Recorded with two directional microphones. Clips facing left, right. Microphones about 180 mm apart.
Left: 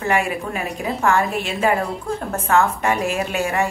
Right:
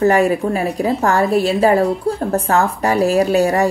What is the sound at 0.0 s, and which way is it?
Speech, 40° right (ahead or behind).